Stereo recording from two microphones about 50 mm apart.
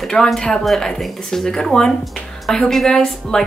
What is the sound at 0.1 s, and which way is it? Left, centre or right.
A woman's voice, centre.